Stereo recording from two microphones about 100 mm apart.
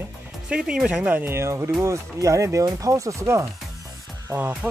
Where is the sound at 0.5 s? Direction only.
10° right (ahead or behind); by 3.4 s 30° right (ahead or behind).